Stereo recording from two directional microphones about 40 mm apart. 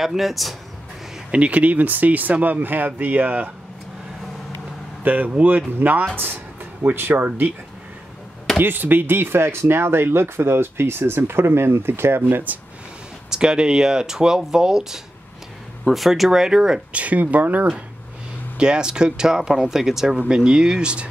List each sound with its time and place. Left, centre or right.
0.0 s speech: centre
1.3 s speech: right
5.0 s speech: right
6.1 s a sound: right
7.1 s speech: right
8.5 s speech: right
12.5 s speech: right
13.3 s speech: centre
15.9 s speech: centre
16.3 s speech: centre
16.9 s speech: right
18.6 s speech: right